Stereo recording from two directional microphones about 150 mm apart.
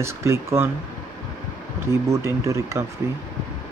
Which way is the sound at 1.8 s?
20° right (ahead or behind).